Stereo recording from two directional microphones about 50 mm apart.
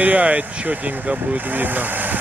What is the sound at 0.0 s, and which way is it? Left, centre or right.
Speech, right.